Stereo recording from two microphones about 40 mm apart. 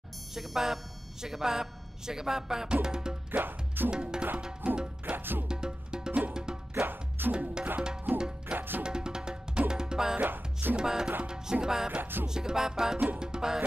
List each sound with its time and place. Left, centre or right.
0.3 s speech: centre
3.3 s music: right
3.9 s music: centre
5.1 s music: right
5.5 s music: centre
6.7 s music: right
8.5 s music: right
8.8 s music: centre
10.1 s music: right
10.8 s music: centre
12.0 s music: right
12.3 s speech: centre